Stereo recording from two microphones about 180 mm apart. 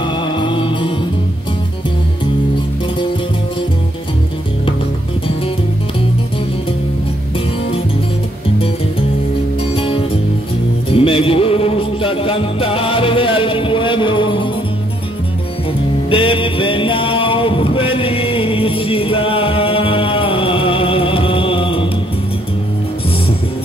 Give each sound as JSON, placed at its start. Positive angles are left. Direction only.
{"t": 0.0, "sound": "music", "side_deg": 25}
{"t": 9.8, "sound": "music", "side_deg": 30}
{"t": 16.1, "sound": "music", "side_deg": 30}